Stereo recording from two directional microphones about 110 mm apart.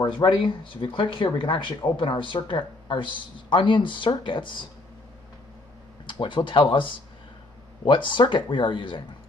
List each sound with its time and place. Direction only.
0.0 s speech: 45° left (ahead or behind)
6.0 s speech: 50° left (ahead or behind)